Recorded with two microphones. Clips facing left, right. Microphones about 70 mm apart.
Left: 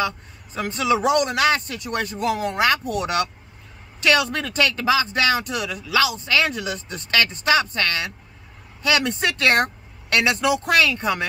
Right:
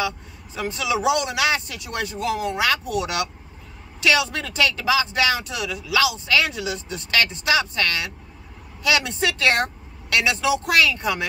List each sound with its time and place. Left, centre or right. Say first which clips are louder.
0.7 s speech: left 3 dB; left
10.8 s speech: even; left